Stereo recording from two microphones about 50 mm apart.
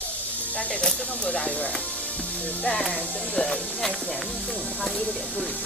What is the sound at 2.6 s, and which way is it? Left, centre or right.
Speech, left.